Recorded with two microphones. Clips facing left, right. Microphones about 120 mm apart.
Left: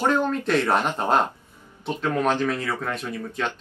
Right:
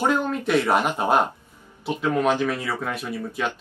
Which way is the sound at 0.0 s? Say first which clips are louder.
Even; 10° right (ahead or behind).